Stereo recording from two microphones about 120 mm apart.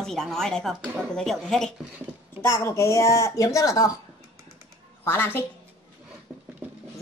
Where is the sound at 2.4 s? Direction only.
20° left (ahead or behind).